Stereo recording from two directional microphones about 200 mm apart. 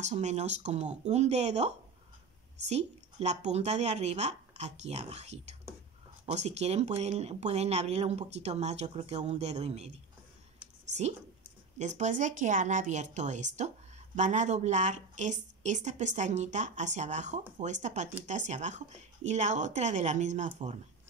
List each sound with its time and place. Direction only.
0.0 s a woman's voice: 35° right (ahead or behind)
2.7 s a woman's voice: 35° right (ahead or behind)
10.9 s a woman's voice: 35° right (ahead or behind)